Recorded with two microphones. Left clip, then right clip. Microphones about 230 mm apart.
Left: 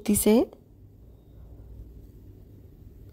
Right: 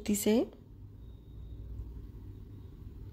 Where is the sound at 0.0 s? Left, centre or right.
Left.